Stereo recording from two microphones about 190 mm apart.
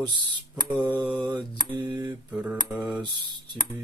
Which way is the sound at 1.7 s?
25° right (ahead or behind).